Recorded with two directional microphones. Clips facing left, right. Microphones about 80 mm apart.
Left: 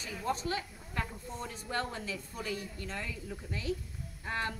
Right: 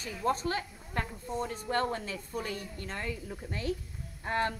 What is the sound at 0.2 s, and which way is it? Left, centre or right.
A woman's voice, right.